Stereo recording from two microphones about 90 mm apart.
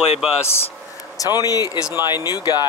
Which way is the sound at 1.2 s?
45° left (ahead or behind).